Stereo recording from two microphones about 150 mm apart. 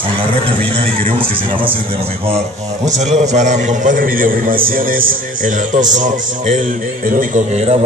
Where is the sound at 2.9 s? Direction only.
50° right (ahead or behind).